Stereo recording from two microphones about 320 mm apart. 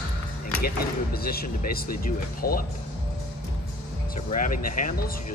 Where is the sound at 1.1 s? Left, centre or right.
Left.